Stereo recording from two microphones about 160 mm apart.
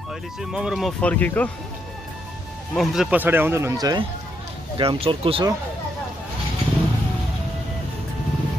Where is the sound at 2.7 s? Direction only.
Centre (ahead or behind); by 4.0 s 25° right (ahead or behind).